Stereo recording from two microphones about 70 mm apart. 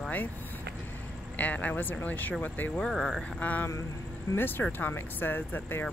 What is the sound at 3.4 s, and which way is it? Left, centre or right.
Speech, left.